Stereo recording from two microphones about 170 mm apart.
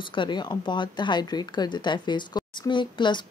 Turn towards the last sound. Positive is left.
turn(degrees=25)  # may be behind; listen again after turning